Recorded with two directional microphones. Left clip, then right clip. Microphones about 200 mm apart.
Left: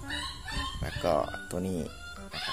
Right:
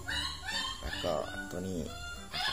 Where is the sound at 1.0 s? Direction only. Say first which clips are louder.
Left 7 dB; 35° left (ahead or behind).